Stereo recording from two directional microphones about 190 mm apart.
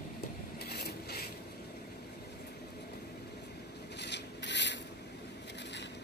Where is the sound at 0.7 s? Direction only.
60° left (ahead or behind).